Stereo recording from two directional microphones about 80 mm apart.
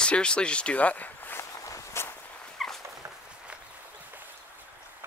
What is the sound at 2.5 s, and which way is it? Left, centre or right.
Dog, centre.